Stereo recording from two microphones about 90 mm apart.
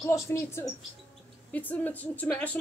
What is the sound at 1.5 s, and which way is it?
A woman's voice, 20° left (ahead or behind).